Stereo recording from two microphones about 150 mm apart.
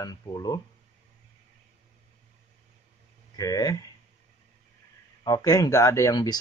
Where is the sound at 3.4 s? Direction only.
25° left (ahead or behind).